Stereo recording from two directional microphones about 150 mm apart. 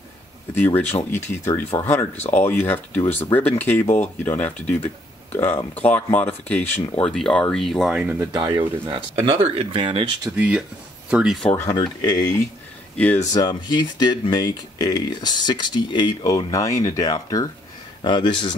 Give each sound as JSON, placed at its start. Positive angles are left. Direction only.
{"t": 0.6, "sound": "speech", "side_deg": 10}
{"t": 7.9, "sound": "speech", "side_deg": -10}
{"t": 8.5, "sound": "speech", "side_deg": -30}
{"t": 10.3, "sound": "speech", "side_deg": -10}
{"t": 11.7, "sound": "speech", "side_deg": 30}
{"t": 12.9, "sound": "speech", "side_deg": 10}
{"t": 13.3, "sound": "speech", "side_deg": 25}